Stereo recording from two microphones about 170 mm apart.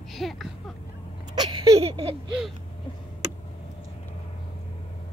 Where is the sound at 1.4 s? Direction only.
25° right (ahead or behind).